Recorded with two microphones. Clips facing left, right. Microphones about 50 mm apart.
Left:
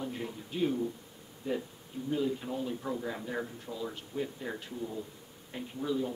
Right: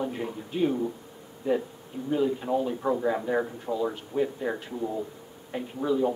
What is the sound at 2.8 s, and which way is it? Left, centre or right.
Speech, right.